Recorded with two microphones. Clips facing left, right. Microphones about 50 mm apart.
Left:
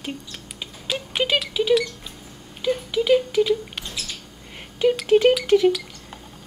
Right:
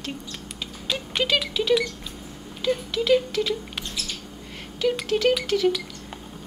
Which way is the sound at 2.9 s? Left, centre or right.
Centre.